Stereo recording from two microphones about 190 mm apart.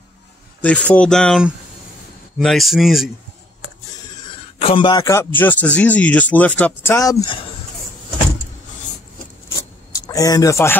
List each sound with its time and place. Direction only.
0.6 s speech: 5° left (ahead or behind)
4.6 s speech: 30° left (ahead or behind)
9.6 s a sound: 20° left (ahead or behind)